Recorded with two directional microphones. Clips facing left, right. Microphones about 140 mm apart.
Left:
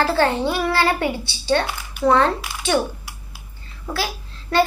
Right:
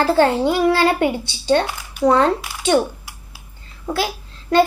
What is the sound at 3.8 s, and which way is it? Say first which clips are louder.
Speech: right 4 dB; 20° right (ahead or behind).